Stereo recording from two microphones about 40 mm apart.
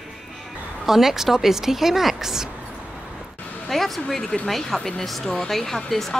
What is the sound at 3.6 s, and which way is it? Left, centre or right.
Speech, centre.